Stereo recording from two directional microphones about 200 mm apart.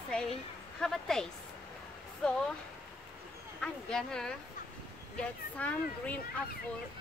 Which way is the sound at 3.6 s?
5° left (ahead or behind).